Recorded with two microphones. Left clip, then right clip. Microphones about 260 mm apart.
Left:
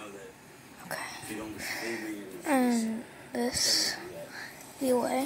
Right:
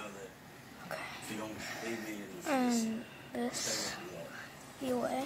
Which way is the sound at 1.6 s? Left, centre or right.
Centre.